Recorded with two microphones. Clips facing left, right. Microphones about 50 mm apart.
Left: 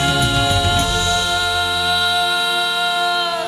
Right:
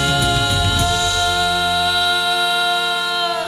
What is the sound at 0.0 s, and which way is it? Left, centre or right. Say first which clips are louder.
A capella: left 1 dB; centre.